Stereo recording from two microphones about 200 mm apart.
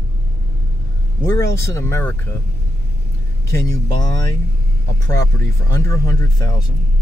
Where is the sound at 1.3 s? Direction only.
15° left (ahead or behind).